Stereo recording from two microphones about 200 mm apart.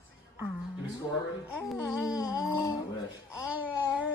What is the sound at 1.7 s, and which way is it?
Music, centre (ahead or behind).